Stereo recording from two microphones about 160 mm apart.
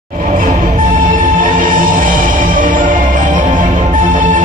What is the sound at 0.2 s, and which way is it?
Music, 50° right (ahead or behind).